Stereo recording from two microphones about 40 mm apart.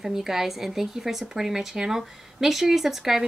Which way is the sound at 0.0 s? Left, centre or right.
Centre.